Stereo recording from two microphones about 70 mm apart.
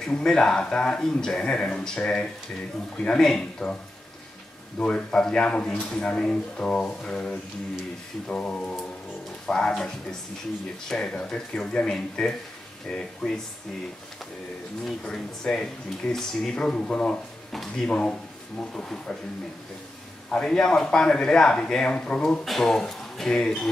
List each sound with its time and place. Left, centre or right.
0.0 s speech: centre
4.7 s speech: centre
10.9 s speech: centre
14.9 s speech: centre
20.2 s speech: centre
22.4 s speech: centre